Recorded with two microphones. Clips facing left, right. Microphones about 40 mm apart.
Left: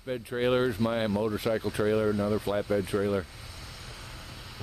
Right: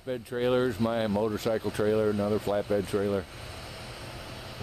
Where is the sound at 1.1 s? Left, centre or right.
Centre.